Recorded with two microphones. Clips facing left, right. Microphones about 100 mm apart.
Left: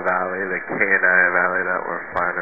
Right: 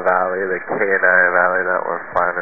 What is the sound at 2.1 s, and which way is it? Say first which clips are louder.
Speech: right 5 dB; 25° right (ahead or behind).